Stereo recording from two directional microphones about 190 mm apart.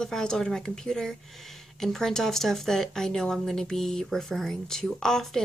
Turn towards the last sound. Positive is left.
turn(degrees=5)  # may be behind; listen again after turning